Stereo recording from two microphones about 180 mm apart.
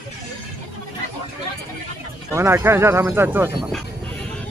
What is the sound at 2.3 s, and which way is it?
Speech, 15° right (ahead or behind).